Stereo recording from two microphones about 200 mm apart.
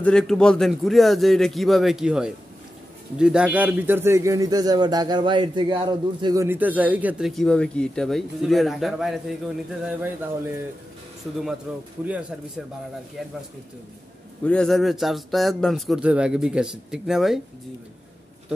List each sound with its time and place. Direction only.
0.0 s speech: 5° left (ahead or behind)
12.0 s speech: 5° right (ahead or behind)
14.4 s speech: 5° left (ahead or behind)